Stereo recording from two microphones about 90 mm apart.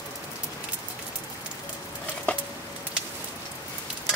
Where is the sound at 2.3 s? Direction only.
15° left (ahead or behind).